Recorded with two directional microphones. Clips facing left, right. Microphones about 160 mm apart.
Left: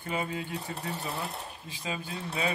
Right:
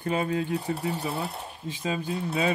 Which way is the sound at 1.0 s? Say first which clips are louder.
Right 4 dB; 35° right (ahead or behind).